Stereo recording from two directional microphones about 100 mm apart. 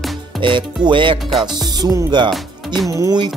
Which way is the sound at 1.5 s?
40° right (ahead or behind).